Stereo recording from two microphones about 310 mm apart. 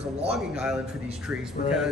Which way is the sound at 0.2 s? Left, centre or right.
Centre.